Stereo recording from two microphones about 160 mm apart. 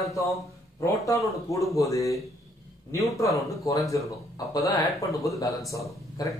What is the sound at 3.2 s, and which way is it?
Speech, 20° left (ahead or behind).